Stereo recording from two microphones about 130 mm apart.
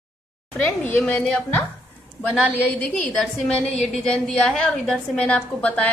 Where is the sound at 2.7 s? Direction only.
10° left (ahead or behind).